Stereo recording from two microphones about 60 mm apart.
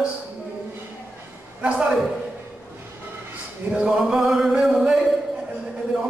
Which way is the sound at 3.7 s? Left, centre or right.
Centre.